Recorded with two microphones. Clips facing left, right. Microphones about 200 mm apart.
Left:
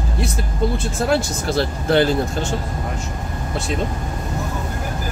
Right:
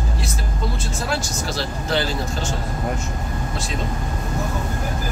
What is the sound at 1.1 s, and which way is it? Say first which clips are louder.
Speech: left 7 dB; 55° left (ahead or behind).